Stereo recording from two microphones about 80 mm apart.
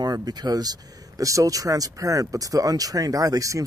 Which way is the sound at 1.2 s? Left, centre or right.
Right.